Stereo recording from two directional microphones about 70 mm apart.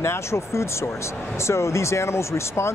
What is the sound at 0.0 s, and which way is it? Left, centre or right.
Speech, left.